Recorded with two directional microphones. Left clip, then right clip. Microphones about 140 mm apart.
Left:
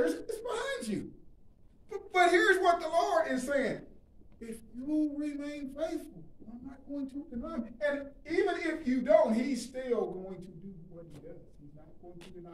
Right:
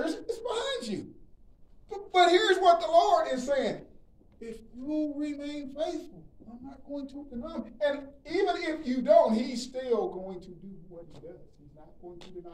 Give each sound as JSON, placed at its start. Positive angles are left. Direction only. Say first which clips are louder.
{"t": 0.0, "sound": "whimper", "louder": "even", "side_deg": -10}
{"t": 1.9, "sound": "a woman's voice", "louder": "right 4 dB", "side_deg": -10}
{"t": 4.4, "sound": "a man's voice", "louder": "right 2 dB", "side_deg": 5}
{"t": 6.9, "sound": "a woman's voice", "louder": "right 1 dB", "side_deg": -10}